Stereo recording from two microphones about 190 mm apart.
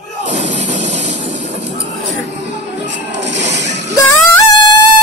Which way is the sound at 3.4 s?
35° right (ahead or behind).